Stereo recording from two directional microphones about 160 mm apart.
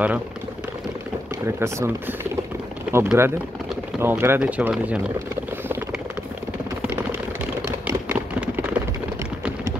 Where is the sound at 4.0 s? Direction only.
15° right (ahead or behind).